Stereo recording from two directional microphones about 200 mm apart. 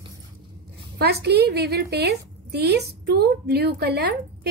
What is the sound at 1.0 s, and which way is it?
A woman's voice, 55° right (ahead or behind).